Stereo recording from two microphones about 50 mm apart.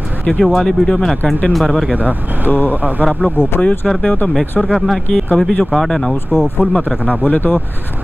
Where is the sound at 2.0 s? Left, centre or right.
Right.